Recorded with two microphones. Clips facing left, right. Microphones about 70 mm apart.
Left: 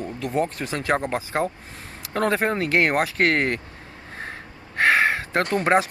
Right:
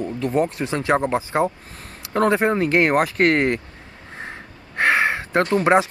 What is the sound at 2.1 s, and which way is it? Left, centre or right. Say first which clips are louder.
Speech: right 4 dB; centre.